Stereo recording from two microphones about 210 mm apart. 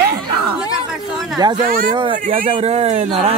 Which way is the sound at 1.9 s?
20° right (ahead or behind).